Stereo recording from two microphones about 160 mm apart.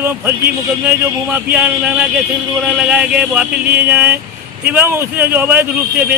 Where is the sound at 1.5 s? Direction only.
5° right (ahead or behind).